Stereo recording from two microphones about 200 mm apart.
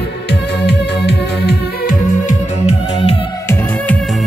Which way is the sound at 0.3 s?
60° left (ahead or behind).